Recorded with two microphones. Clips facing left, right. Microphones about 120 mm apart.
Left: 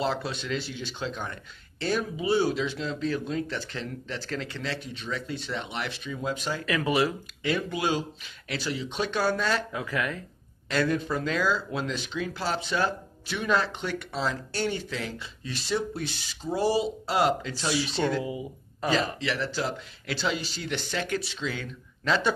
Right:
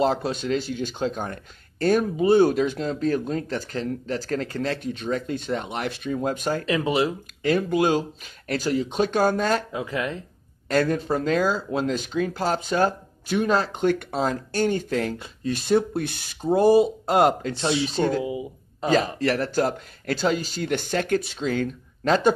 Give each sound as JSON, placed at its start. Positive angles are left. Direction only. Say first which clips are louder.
{"t": 0.0, "sound": "speech", "louder": "right 7 dB", "side_deg": -45}
{"t": 6.6, "sound": "speech", "louder": "right 1 dB", "side_deg": -25}
{"t": 7.4, "sound": "speech", "louder": "right 7 dB", "side_deg": -45}
{"t": 9.7, "sound": "speech", "louder": "right 3 dB", "side_deg": -25}
{"t": 10.7, "sound": "speech", "louder": "right 4 dB", "side_deg": -40}
{"t": 18.2, "sound": "speech", "louder": "right 4 dB", "side_deg": -20}
{"t": 19.1, "sound": "speech", "louder": "right 7 dB", "side_deg": -50}